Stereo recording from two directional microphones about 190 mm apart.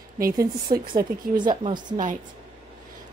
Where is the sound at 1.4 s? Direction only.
25° right (ahead or behind).